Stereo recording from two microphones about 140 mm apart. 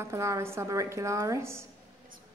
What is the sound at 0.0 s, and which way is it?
A woman's voice, 20° right (ahead or behind).